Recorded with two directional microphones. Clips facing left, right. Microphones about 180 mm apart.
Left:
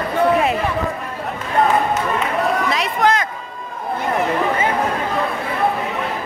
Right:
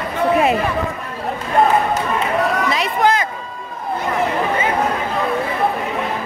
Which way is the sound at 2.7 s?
Centre (ahead or behind).